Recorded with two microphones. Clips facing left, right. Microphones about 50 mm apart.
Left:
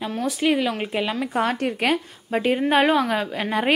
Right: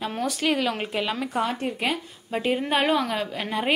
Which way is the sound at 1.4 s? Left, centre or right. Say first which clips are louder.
Left 5 dB; left.